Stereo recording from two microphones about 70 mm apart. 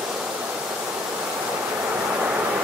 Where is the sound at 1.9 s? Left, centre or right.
Right.